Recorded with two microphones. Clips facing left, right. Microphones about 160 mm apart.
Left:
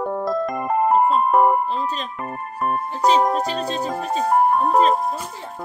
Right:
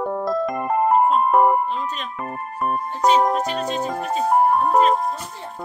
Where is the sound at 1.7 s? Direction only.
35° left (ahead or behind).